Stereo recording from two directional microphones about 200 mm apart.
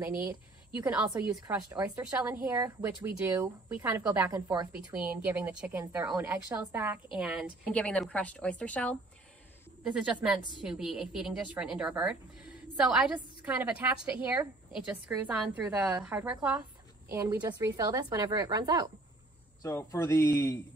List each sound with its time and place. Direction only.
0.0 s a woman's voice: 10° right (ahead or behind)
7.7 s a woman's voice: 5° left (ahead or behind)
9.8 s a woman's voice: 5° right (ahead or behind)
19.6 s speech: 15° left (ahead or behind)